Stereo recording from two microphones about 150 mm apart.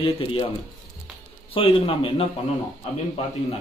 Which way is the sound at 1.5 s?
40° left (ahead or behind).